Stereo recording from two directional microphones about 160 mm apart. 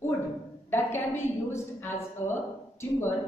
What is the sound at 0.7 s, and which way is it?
A woman's voice, 15° left (ahead or behind).